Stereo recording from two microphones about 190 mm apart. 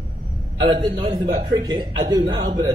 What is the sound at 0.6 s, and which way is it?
Speech, 25° right (ahead or behind).